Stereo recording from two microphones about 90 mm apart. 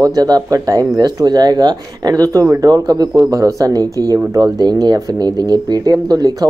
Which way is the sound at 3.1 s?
35° right (ahead or behind).